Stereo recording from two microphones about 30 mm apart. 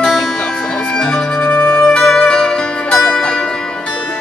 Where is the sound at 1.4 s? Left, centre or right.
Left.